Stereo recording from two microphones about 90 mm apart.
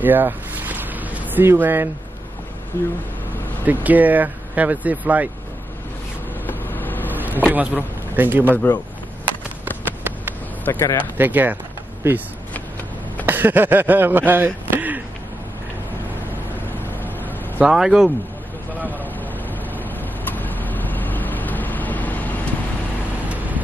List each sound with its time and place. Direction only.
0.0 s boat: 20° right (ahead or behind)
2.7 s speech: 25° left (ahead or behind)
3.6 s speech: 20° right (ahead or behind)
6.4 s vehicle: 20° left (ahead or behind)
7.2 s a man's voice: 20° right (ahead or behind)
10.6 s speech: 25° left (ahead or behind)
11.1 s speech: 20° right (ahead or behind)
17.6 s speech: 5° right (ahead or behind)
19.8 s vehicle: 20° left (ahead or behind)
23.2 s vehicle: 15° right (ahead or behind)